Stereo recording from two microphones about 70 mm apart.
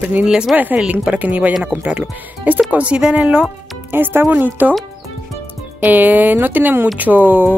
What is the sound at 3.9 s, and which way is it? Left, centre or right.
Speech, right.